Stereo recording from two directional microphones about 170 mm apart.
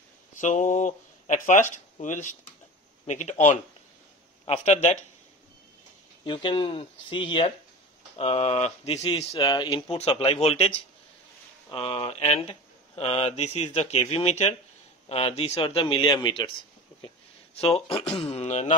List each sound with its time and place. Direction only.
0.4 s speech: 45° left (ahead or behind)
6.2 s speech: 30° left (ahead or behind)
11.7 s speech: 30° left (ahead or behind)
17.6 s speech: 35° left (ahead or behind)